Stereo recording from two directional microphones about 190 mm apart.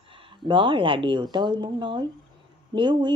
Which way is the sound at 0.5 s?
25° right (ahead or behind).